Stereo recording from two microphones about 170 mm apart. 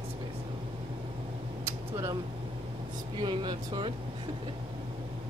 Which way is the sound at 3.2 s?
25° right (ahead or behind).